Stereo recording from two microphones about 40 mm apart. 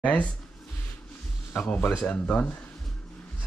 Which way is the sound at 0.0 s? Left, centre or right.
Left.